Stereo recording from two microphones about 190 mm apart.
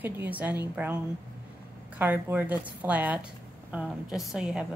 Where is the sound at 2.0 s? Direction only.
10° right (ahead or behind).